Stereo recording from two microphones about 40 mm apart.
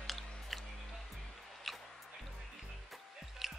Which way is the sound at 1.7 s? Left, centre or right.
Centre.